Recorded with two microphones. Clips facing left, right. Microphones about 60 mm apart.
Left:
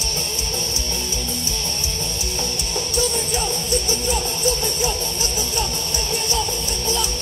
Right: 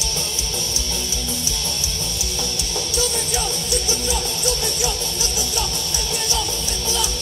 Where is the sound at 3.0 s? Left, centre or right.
Left.